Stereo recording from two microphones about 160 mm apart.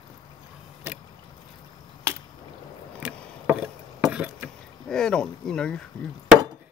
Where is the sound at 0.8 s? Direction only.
10° right (ahead or behind).